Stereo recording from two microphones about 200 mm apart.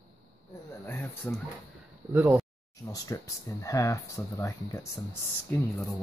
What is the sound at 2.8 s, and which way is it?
Speech, 15° left (ahead or behind).